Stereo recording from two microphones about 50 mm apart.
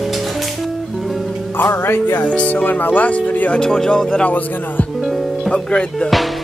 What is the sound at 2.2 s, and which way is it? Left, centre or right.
Speech, left.